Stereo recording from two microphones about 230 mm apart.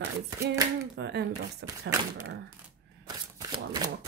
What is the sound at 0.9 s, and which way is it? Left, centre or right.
Speech, right.